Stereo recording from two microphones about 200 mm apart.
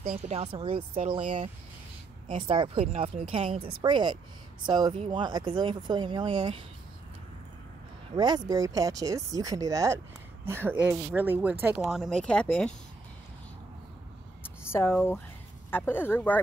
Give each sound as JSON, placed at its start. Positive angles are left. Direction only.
{"t": 0.3, "sound": "speech", "side_deg": -30}
{"t": 2.2, "sound": "speech", "side_deg": -25}
{"t": 8.2, "sound": "speech", "side_deg": -20}
{"t": 14.7, "sound": "speech", "side_deg": 10}